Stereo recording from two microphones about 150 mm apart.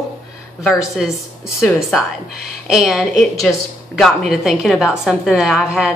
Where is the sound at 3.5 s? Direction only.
15° left (ahead or behind).